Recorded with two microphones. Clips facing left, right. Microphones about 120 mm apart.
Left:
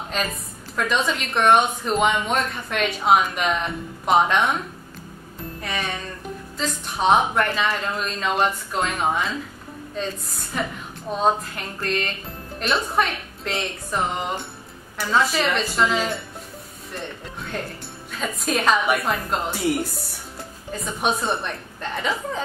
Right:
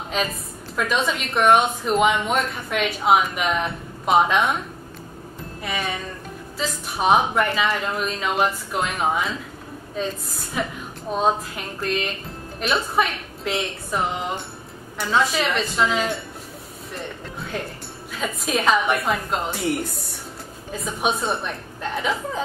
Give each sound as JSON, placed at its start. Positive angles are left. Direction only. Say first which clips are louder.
{"t": 0.1, "sound": "speech", "louder": "right 2 dB", "side_deg": 0}
{"t": 5.6, "sound": "speech", "louder": "right 2 dB", "side_deg": -5}
{"t": 20.7, "sound": "speech", "louder": "even", "side_deg": 0}